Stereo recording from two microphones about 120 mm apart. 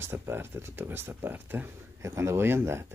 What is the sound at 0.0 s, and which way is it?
Speech, 20° right (ahead or behind).